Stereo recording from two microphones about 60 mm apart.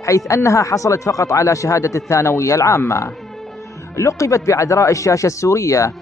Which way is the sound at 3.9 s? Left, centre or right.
Left.